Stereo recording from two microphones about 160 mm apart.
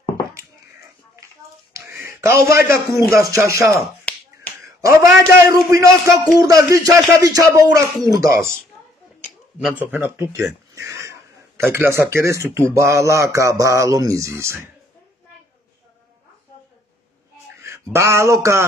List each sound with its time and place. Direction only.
1.9 s a sound: 15° right (ahead or behind)
3.0 s a man's voice: 20° right (ahead or behind)
4.1 s finger snapping: 10° left (ahead or behind)
4.8 s a man's voice: 20° right (ahead or behind)
9.6 s a man's voice: 5° right (ahead or behind)
17.9 s speech: 15° right (ahead or behind)